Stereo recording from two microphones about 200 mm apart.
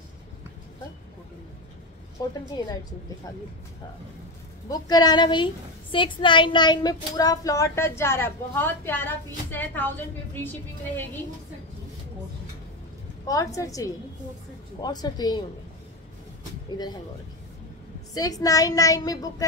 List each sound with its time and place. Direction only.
2.2 s a woman's voice: 20° left (ahead or behind)
4.6 s a woman's voice: 20° left (ahead or behind)
13.3 s a woman's voice: 15° left (ahead or behind)
18.1 s a woman's voice: 20° left (ahead or behind)